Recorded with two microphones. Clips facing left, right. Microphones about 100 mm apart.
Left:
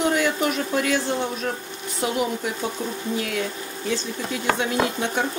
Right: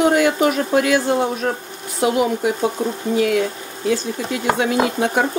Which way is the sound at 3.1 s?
60° right (ahead or behind).